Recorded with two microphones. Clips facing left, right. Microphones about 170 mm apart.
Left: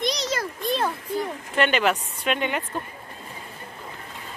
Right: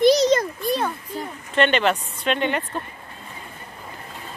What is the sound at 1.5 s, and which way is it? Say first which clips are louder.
Speech: right 3 dB; 5° left (ahead or behind).